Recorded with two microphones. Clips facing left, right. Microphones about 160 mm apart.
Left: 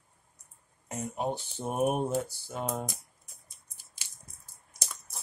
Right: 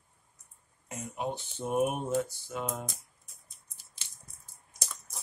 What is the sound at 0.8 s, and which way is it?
Speech, 40° left (ahead or behind).